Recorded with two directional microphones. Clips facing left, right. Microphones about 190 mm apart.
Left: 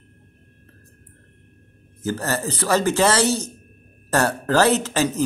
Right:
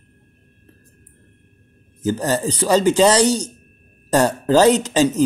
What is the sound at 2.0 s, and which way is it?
Speech, 15° right (ahead or behind).